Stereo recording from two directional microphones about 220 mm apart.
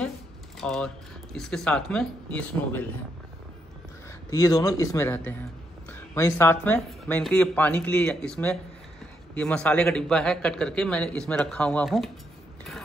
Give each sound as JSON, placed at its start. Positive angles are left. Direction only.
{"t": 0.6, "sound": "speech", "side_deg": 5}
{"t": 4.3, "sound": "speech", "side_deg": 15}